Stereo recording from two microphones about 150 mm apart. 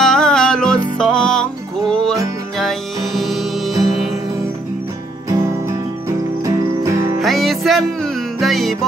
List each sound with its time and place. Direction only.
0.0 s music: 5° left (ahead or behind)
5.3 s music: 20° right (ahead or behind)
7.2 s music: centre (ahead or behind)